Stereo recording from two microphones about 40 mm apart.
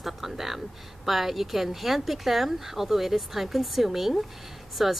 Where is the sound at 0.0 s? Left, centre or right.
Centre.